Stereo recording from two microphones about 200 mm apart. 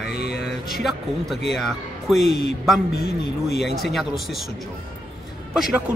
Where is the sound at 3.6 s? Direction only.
Centre (ahead or behind).